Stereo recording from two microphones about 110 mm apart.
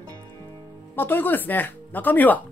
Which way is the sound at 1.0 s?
20° left (ahead or behind).